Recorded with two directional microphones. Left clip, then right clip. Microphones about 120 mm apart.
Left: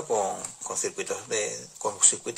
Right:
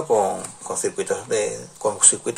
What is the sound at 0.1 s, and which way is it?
Speech, 15° left (ahead or behind).